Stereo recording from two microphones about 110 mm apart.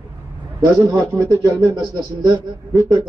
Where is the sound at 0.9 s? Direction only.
30° right (ahead or behind).